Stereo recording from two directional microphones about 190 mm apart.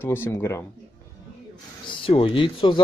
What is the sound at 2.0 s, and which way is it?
Speech, 30° left (ahead or behind).